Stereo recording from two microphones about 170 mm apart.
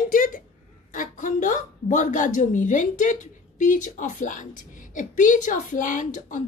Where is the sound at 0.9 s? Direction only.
50° left (ahead or behind).